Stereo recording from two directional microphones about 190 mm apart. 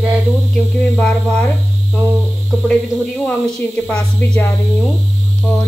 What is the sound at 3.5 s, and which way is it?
Speech, 5° left (ahead or behind).